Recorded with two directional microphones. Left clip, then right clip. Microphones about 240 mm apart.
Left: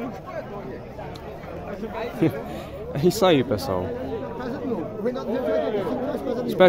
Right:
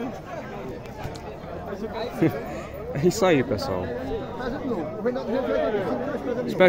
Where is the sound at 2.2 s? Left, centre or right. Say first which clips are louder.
Even; centre.